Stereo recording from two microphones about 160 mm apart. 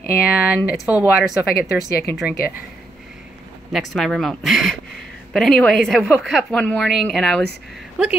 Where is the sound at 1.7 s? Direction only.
90° left.